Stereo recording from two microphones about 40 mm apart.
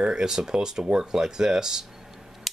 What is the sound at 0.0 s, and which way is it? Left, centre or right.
Speech, centre.